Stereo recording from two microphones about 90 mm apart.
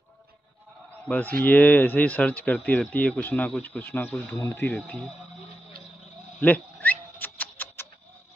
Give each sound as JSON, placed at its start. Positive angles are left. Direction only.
{"t": 1.0, "sound": "speech", "side_deg": 15}
{"t": 4.4, "sound": "speech", "side_deg": 30}
{"t": 4.6, "sound": "speech", "side_deg": 15}
{"t": 6.4, "sound": "a sound", "side_deg": 15}